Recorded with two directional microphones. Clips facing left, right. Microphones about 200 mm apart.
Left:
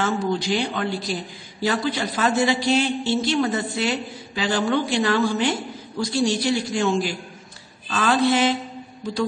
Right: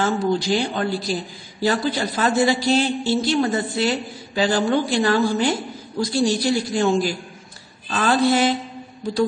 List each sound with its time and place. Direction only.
0.0 s a man's voice: 35° right (ahead or behind)